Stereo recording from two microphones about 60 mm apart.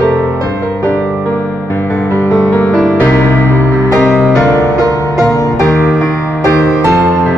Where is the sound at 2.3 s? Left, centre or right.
Left.